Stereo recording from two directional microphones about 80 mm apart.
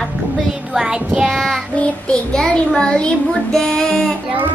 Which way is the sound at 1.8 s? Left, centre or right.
Centre.